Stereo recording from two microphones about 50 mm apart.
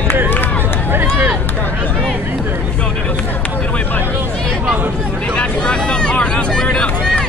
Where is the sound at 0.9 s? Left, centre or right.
Right.